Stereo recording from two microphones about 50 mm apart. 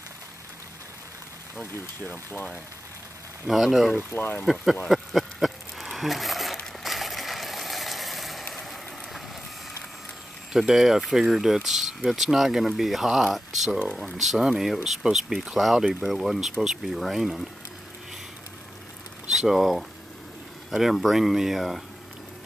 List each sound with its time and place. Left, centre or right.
1.6 s speech: left
3.4 s speech: centre
4.1 s speech: left
4.8 s a sound: centre
10.5 s speech: centre
19.3 s speech: centre